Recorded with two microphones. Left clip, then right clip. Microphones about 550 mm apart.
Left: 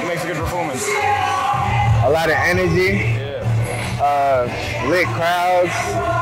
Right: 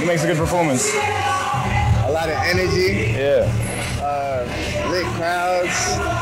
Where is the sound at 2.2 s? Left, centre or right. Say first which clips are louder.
Left 3 dB; centre.